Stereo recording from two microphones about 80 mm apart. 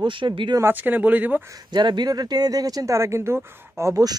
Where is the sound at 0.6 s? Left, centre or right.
Right.